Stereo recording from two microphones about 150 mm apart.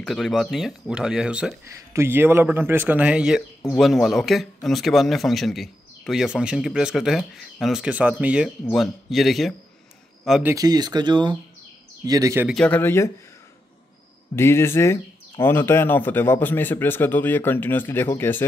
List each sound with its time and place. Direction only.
0.0 s a man's voice: centre (ahead or behind)
10.4 s speech: 20° right (ahead or behind)
12.4 s speech: 5° left (ahead or behind)
14.3 s speech: 15° left (ahead or behind)